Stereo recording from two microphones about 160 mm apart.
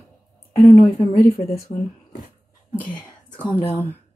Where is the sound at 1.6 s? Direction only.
45° left (ahead or behind).